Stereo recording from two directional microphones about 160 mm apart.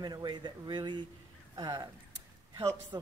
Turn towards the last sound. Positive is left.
turn(degrees=-25)  # may be behind; listen again after turning